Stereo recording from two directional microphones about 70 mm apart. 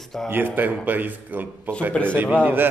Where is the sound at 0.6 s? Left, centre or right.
Right.